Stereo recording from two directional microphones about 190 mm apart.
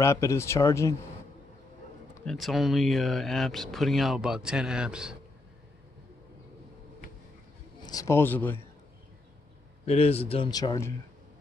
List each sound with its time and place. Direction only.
0.0 s speech: 15° left (ahead or behind)
2.2 s speech: centre (ahead or behind)
7.8 s a man's voice: 20° left (ahead or behind)
9.8 s a man's voice: 30° left (ahead or behind)
10.5 s speech: 20° left (ahead or behind)